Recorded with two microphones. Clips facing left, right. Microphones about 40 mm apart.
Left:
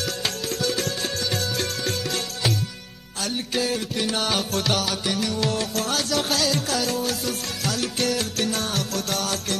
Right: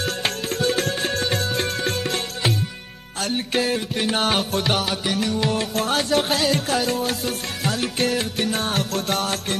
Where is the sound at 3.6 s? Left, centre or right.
Right.